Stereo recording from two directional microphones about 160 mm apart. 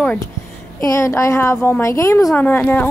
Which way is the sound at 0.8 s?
20° left (ahead or behind).